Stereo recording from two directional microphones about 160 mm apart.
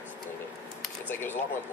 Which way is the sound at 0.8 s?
10° left (ahead or behind).